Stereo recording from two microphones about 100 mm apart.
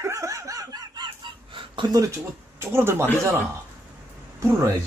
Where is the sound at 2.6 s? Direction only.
25° right (ahead or behind).